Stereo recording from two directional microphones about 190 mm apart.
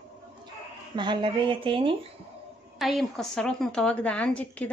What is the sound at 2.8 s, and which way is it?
A woman's voice, centre (ahead or behind).